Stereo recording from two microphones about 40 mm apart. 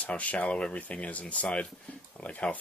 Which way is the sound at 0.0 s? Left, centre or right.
Left.